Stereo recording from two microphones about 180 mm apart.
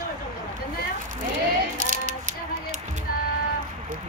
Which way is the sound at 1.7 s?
45° right (ahead or behind).